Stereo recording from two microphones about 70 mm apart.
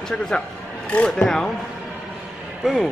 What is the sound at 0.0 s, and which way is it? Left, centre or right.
A man's voice, centre.